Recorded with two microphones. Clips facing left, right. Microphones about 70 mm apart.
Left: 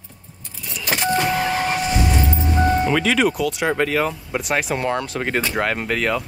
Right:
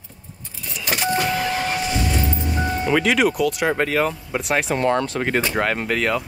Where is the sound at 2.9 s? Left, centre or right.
Centre.